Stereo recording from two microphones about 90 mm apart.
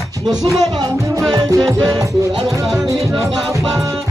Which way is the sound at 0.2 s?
45° right (ahead or behind).